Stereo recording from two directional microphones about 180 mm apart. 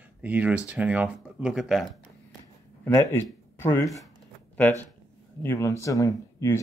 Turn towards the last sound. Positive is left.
turn(degrees=15)  # may be behind; listen again after turning